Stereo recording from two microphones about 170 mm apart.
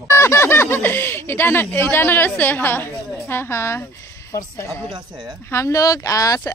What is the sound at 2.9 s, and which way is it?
Speech, centre (ahead or behind).